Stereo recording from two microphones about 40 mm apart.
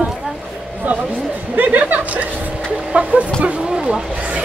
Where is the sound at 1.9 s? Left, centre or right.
Right.